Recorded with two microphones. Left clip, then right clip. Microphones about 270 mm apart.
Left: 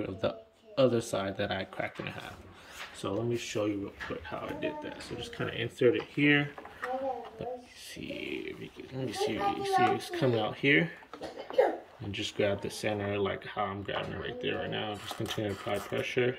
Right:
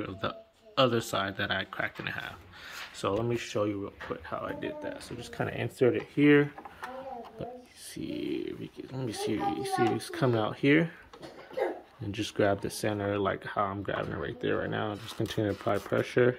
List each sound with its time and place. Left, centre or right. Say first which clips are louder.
0.0 s speech: left 2 dB; centre
8.0 s speech: right 3 dB; centre
12.1 s speech: right 3 dB; centre